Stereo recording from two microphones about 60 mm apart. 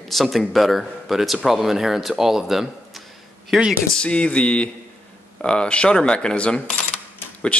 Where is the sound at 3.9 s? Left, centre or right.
Centre.